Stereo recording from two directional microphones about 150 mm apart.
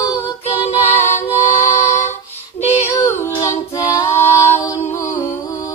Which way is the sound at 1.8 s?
50° left (ahead or behind).